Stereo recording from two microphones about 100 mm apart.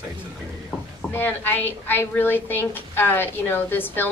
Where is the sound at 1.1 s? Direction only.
20° left (ahead or behind).